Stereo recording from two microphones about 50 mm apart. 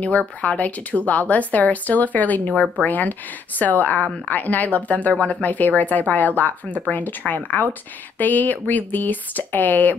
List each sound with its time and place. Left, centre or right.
0.4 s speech: left